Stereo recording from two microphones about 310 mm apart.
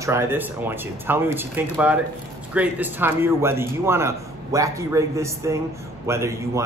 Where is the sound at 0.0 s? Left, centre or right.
Centre.